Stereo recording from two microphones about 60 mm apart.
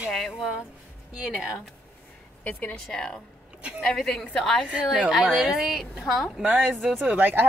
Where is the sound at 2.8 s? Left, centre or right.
Centre.